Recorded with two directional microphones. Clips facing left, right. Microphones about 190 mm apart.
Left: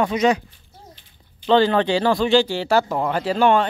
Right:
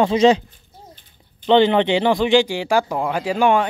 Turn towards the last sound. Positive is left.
turn(degrees=-10)  # may be behind; listen again after turning